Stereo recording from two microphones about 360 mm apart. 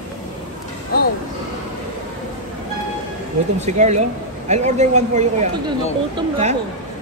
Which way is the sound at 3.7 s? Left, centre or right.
Centre.